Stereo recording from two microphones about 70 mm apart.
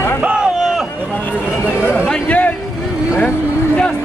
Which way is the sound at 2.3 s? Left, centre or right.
Left.